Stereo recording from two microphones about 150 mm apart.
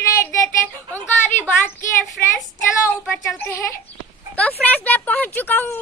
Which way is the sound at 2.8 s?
15° left (ahead or behind).